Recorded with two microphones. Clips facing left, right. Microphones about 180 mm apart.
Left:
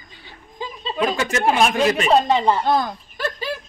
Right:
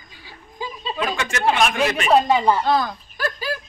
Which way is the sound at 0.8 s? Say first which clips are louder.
Left 4 dB; 25° left (ahead or behind).